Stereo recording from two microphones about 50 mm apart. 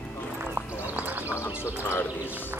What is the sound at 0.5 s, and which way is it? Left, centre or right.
Horse, right.